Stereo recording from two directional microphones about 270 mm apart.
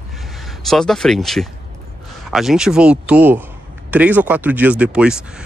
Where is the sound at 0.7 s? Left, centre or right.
Centre.